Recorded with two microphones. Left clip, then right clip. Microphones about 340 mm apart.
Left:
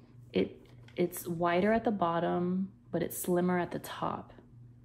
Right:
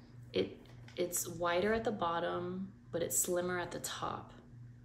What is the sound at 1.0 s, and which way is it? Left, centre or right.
Speech, centre.